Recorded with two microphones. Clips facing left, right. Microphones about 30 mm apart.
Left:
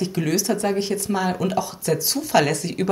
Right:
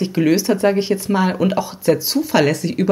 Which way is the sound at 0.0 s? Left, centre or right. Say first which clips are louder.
Right 7 dB; right.